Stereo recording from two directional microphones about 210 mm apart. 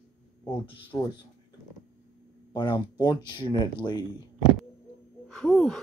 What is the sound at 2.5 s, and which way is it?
Speech, 20° left (ahead or behind).